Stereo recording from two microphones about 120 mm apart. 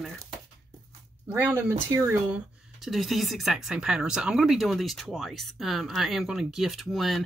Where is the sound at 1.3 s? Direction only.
20° right (ahead or behind).